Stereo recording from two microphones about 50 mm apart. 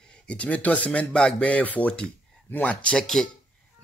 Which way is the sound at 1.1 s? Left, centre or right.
Centre.